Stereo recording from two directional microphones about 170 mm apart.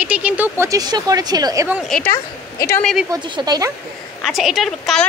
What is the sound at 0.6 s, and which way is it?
Speech, 20° right (ahead or behind).